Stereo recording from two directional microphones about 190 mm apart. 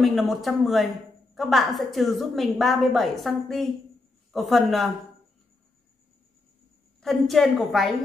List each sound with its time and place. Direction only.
0.0 s a woman's voice: centre (ahead or behind)
7.0 s a woman's voice: centre (ahead or behind)